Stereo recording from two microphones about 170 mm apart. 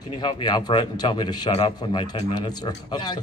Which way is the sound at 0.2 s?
25° left (ahead or behind).